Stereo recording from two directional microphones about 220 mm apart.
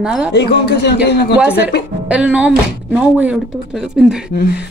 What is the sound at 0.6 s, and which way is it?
Speech, 50° left (ahead or behind).